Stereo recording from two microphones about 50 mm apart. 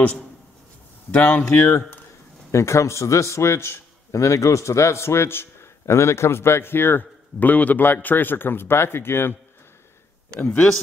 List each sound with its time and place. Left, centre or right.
1.1 s speech: left
1.5 s a man's voice: left
2.5 s a man's voice: left
10.4 s speech: left